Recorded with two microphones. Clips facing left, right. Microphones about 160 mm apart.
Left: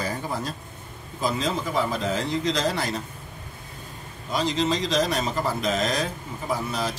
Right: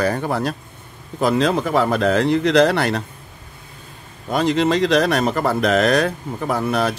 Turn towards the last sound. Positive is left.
turn(degrees=-60)  # may be behind; listen again after turning